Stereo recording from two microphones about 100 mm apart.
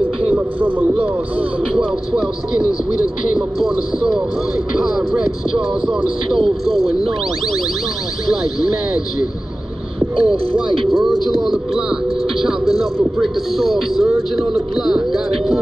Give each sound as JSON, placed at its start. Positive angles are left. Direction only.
{"t": 0.6, "sound": "a man's voice", "side_deg": -15}
{"t": 6.6, "sound": "speech", "side_deg": 0}
{"t": 9.9, "sound": "speech", "side_deg": -70}
{"t": 11.4, "sound": "speech", "side_deg": 0}